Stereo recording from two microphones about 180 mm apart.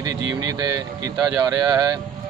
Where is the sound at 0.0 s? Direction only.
20° right (ahead or behind).